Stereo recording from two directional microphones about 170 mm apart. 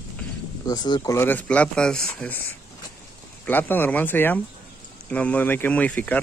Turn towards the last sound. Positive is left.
turn(degrees=10)  # may be behind; listen again after turning